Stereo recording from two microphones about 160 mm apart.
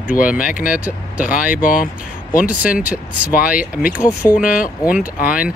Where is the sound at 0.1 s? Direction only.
55° left (ahead or behind).